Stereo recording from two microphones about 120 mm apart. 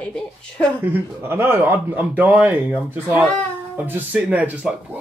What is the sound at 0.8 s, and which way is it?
Speech, 15° right (ahead or behind).